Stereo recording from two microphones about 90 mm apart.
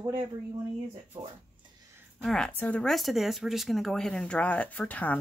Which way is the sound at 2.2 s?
5° left (ahead or behind).